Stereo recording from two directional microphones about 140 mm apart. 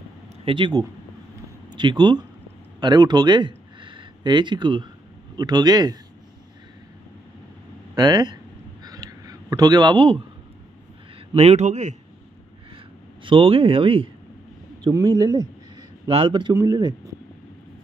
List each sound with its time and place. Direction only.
0.5 s speech: 35° right (ahead or behind)
7.9 s speech: 30° right (ahead or behind)
8.8 s a sound: 25° right (ahead or behind)
11.3 s a man's voice: 50° right (ahead or behind)
13.2 s speech: 40° right (ahead or behind)
15.0 s speech: 25° right (ahead or behind)
16.1 s speech: 40° right (ahead or behind)